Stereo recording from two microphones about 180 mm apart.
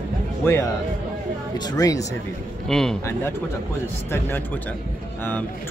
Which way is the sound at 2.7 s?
Centre (ahead or behind).